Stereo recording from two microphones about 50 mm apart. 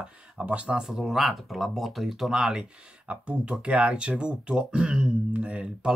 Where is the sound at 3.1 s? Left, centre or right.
Right.